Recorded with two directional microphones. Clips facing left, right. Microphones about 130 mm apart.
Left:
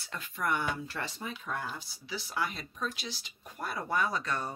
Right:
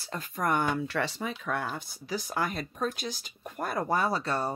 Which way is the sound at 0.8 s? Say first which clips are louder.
Right 7 dB; 75° right (ahead or behind).